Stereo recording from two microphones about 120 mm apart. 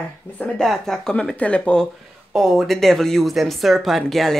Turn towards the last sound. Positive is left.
turn(degrees=0)  # may be behind; listen again after turning